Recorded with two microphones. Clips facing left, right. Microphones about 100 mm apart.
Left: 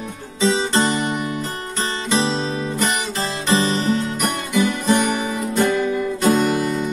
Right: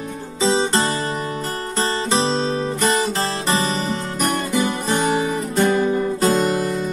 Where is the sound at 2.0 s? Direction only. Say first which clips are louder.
Left 1 dB; 35° right (ahead or behind).